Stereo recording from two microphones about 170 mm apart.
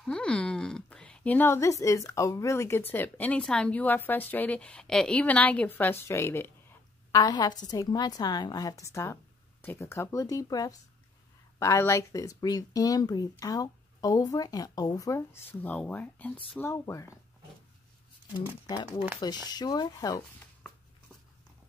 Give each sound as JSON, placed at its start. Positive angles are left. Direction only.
{"t": 0.0, "sound": "a woman's voice", "side_deg": 5}
{"t": 19.1, "sound": "speech", "side_deg": 25}